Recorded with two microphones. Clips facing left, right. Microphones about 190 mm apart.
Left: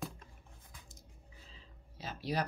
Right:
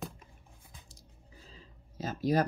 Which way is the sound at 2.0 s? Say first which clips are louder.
Right 8 dB; 45° right (ahead or behind).